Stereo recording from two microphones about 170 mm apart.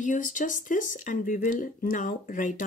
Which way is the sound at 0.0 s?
50° left (ahead or behind).